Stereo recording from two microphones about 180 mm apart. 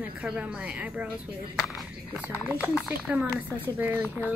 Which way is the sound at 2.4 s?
5° right (ahead or behind).